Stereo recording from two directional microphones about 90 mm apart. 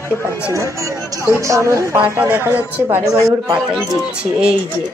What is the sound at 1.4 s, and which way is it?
Speech, 35° right (ahead or behind).